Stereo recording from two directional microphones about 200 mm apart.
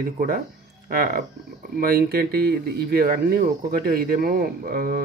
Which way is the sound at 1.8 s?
50° right (ahead or behind).